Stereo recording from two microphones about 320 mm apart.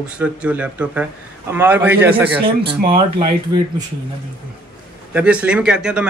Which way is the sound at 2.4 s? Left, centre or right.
Centre.